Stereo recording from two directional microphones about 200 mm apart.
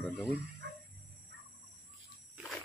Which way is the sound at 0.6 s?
55° right (ahead or behind).